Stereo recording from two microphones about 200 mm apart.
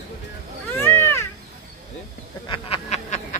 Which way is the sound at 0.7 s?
10° left (ahead or behind).